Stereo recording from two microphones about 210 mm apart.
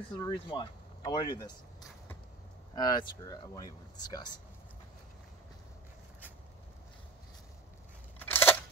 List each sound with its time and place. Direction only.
0.2 s speech: 20° left (ahead or behind)
2.7 s speech: 20° left (ahead or behind)
8.2 s a sound: 10° left (ahead or behind)